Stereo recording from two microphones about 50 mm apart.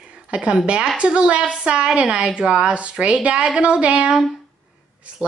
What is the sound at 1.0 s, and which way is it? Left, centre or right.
A woman's voice, right.